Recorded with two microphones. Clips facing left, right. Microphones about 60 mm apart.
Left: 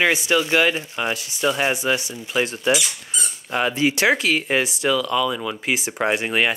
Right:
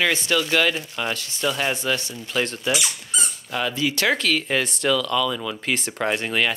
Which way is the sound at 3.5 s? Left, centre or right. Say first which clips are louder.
Left 4 dB; left.